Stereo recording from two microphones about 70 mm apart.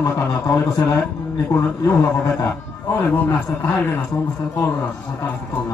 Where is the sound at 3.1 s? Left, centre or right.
Left.